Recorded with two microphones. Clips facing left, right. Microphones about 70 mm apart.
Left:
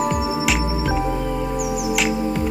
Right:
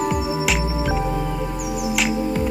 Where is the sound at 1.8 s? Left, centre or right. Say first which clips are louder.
Right 2 dB; centre.